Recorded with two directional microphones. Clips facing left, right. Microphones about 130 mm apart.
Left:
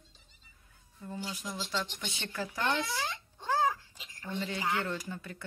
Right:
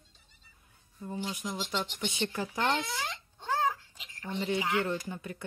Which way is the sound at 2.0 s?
25° right (ahead or behind).